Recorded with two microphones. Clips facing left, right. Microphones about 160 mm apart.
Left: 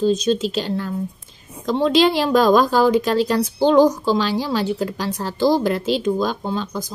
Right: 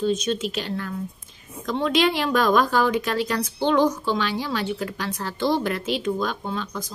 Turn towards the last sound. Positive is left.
turn(degrees=35)  # may be behind; listen again after turning